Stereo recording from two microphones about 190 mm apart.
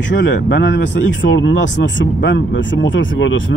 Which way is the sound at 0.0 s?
75° left (ahead or behind).